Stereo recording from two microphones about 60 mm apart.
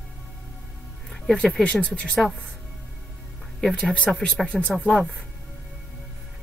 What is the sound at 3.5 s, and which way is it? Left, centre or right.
Speech, centre.